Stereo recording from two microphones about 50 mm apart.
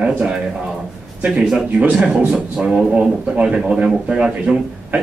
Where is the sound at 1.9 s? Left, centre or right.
Centre.